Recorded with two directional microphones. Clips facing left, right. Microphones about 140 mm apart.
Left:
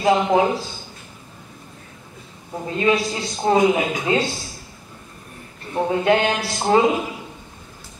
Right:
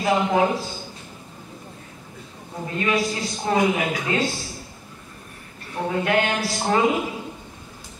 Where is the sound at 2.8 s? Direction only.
25° left (ahead or behind).